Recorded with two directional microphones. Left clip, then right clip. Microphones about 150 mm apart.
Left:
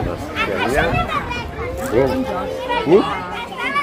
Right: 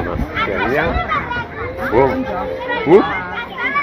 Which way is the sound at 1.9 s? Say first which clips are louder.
Right 3 dB; 10° left (ahead or behind).